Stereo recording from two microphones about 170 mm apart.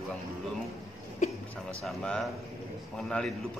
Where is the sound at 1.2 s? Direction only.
45° left (ahead or behind).